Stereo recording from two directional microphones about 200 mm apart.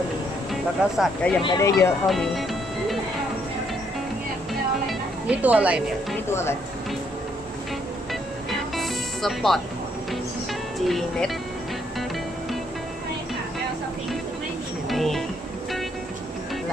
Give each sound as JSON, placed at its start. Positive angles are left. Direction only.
{"t": 0.5, "sound": "speech", "side_deg": 0}
{"t": 1.4, "sound": "speech", "side_deg": 20}
{"t": 2.0, "sound": "speech", "side_deg": 0}
{"t": 4.8, "sound": "music", "side_deg": -5}
{"t": 8.1, "sound": "music", "side_deg": 0}
{"t": 10.9, "sound": "speech", "side_deg": 0}
{"t": 14.9, "sound": "music", "side_deg": 0}